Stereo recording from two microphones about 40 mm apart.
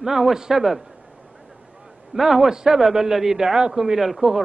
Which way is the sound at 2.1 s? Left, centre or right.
Centre.